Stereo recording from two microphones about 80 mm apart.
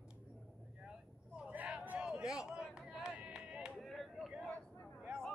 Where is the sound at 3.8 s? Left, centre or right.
Centre.